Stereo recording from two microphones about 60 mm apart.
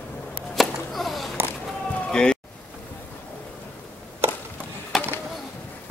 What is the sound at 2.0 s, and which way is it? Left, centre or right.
Music, centre.